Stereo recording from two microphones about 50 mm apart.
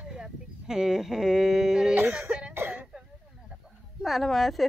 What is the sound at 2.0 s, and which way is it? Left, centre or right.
Throat clearing, right.